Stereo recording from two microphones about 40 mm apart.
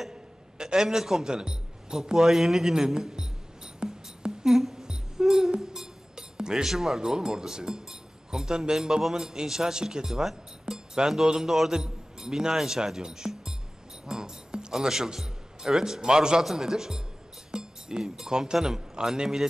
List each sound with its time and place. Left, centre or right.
0.1 s a man's voice: centre
3.8 s music: centre
4.5 s music: centre
6.1 s a sound: centre
6.6 s speech: centre
14.0 s music: centre
14.7 s a man's voice: centre